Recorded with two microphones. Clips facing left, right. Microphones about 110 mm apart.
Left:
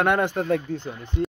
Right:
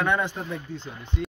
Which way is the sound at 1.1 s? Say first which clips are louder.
Left 6 dB; 45° left (ahead or behind).